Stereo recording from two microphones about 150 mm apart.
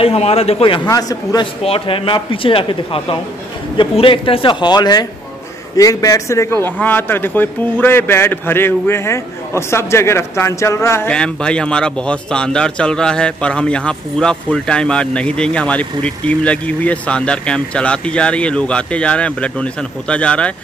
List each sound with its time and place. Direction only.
0.0 s speech: 40° left (ahead or behind)
0.8 s a man's voice: 25° left (ahead or behind)
1.6 s speech: 40° left (ahead or behind); by 11.1 s 20° left (ahead or behind)
11.1 s speech: 5° left (ahead or behind)